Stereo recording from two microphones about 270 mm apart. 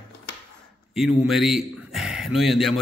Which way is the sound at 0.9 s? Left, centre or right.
Centre.